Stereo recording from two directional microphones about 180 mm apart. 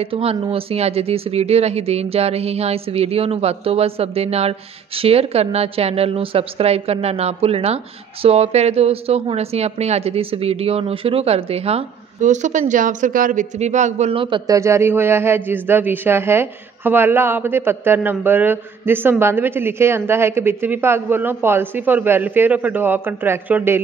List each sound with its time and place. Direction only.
0.0 s speech: 35° right (ahead or behind); by 23.8 s 10° right (ahead or behind)